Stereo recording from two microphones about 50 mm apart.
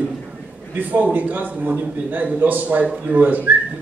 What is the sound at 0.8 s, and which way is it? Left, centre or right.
A man's voice, right.